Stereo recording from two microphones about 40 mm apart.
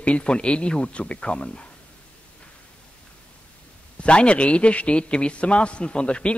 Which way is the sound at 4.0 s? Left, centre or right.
Left.